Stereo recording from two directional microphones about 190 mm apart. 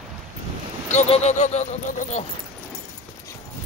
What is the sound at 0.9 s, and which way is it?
Speech, 35° left (ahead or behind).